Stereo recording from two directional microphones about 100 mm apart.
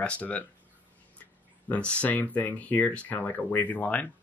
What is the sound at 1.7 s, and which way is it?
Speech, 10° left (ahead or behind).